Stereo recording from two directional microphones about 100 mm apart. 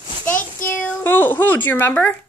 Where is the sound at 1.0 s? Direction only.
20° left (ahead or behind).